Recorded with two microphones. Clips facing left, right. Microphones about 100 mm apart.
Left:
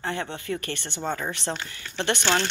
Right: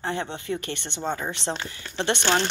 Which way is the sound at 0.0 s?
25° right (ahead or behind).